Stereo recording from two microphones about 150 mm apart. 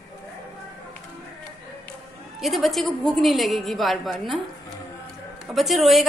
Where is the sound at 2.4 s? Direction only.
Centre (ahead or behind).